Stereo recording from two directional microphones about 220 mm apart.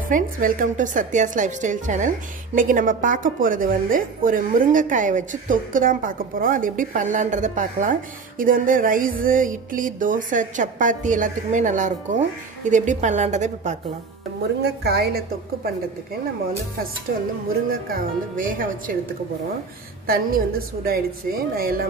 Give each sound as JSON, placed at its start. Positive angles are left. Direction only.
{"t": 0.1, "sound": "a woman's voice", "side_deg": -40}
{"t": 14.6, "sound": "a woman's voice", "side_deg": -45}
{"t": 18.3, "sound": "a woman's voice", "side_deg": -40}
{"t": 20.1, "sound": "a woman's voice", "side_deg": -45}